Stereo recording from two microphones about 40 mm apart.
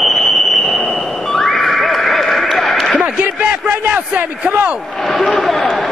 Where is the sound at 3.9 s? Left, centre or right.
Right.